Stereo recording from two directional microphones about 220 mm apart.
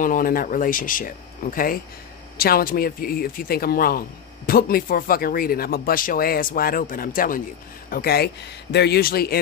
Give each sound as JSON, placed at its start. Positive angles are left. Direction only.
{"t": 0.0, "sound": "speech", "side_deg": 40}